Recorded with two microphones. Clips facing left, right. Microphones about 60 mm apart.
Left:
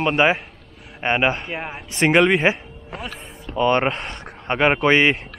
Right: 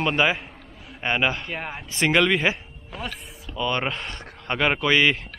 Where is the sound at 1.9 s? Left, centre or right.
Left.